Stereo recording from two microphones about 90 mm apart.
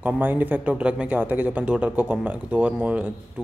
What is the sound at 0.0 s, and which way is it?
Speech, 20° right (ahead or behind).